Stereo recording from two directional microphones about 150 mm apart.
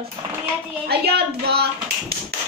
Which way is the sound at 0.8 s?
90° right.